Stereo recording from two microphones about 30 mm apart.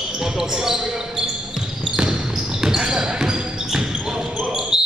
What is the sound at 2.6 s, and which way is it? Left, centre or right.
Basketball bounce, right.